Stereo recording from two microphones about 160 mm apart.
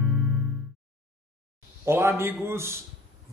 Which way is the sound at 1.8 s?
15° right (ahead or behind).